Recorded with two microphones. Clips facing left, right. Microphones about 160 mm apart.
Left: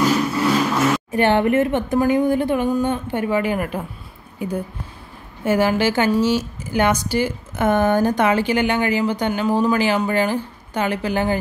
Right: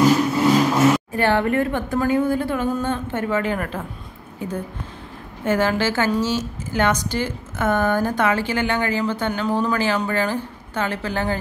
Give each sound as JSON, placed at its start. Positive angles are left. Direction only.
{"t": 0.4, "sound": "vehicle", "side_deg": -15}
{"t": 1.1, "sound": "a woman's voice", "side_deg": 20}